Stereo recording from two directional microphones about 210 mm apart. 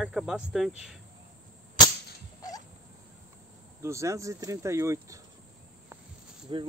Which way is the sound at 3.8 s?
15° right (ahead or behind).